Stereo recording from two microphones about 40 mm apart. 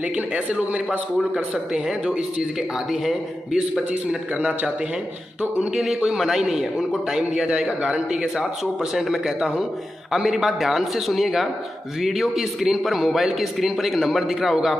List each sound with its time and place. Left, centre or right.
0.1 s speech: right
1.3 s speech: right
5.8 s a man's voice: centre
8.9 s a man's voice: centre